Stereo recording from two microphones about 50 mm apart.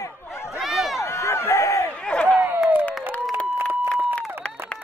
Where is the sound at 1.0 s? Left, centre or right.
Left.